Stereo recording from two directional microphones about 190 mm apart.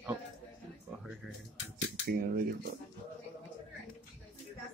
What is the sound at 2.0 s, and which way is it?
Cutlery, 50° right (ahead or behind).